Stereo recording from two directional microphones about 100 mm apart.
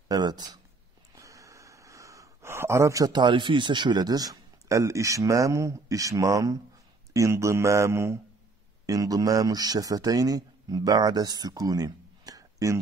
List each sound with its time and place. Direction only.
0.1 s speech: 45° right (ahead or behind)
1.1 s a sound: 35° right (ahead or behind)
3.2 s speech: 50° right (ahead or behind); by 12.7 s 35° right (ahead or behind)